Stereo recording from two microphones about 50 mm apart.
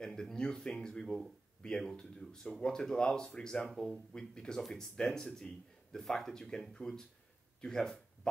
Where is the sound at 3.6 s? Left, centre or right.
Centre.